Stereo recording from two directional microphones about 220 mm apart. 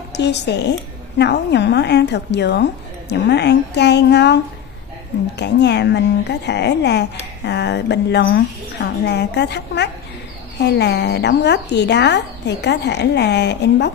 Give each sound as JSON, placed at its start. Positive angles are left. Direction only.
{"t": 0.1, "sound": "a woman's voice", "side_deg": 50}
{"t": 5.4, "sound": "a woman's voice", "side_deg": 50}